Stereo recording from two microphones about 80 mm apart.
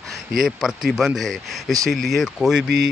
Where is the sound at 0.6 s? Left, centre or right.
Centre.